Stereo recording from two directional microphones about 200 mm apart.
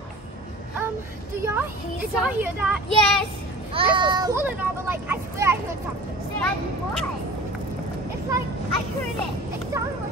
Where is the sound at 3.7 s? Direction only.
25° right (ahead or behind).